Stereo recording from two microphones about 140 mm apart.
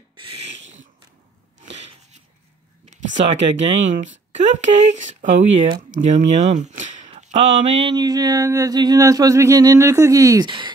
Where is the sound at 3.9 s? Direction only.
55° right (ahead or behind).